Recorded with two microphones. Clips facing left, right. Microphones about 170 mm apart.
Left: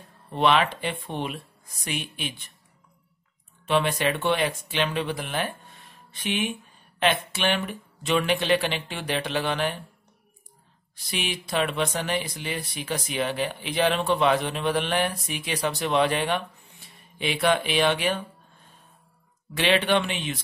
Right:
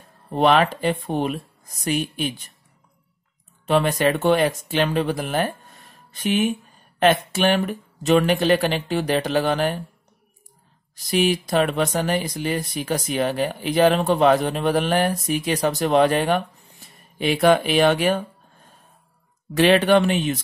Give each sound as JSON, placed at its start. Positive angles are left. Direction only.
{"t": 0.3, "sound": "speech", "side_deg": -45}
{"t": 3.6, "sound": "speech", "side_deg": -40}
{"t": 11.0, "sound": "speech", "side_deg": -40}
{"t": 19.5, "sound": "speech", "side_deg": -45}